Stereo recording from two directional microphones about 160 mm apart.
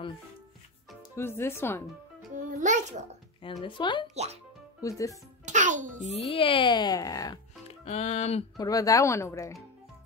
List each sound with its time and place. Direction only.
1.1 s speech: 15° left (ahead or behind)
2.3 s music: 50° right (ahead or behind)
3.6 s speech: 30° left (ahead or behind)
4.1 s a child's voice: 45° right (ahead or behind)
4.8 s speech: 20° left (ahead or behind)
5.4 s music: 50° right (ahead or behind)
6.1 s speech: 35° left (ahead or behind)
7.6 s music: 45° left (ahead or behind)
8.5 s speech: 20° left (ahead or behind)